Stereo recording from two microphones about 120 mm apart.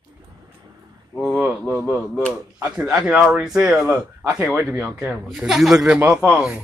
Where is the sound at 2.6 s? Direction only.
5° right (ahead or behind).